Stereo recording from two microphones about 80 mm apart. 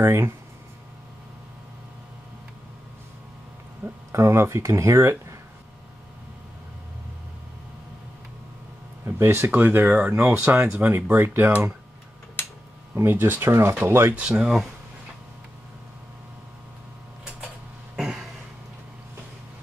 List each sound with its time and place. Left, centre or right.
0.0 s speech: right
4.1 s speech: right
9.0 s speech: right
12.9 s speech: right
14.1 s speech: centre
17.9 s cough: centre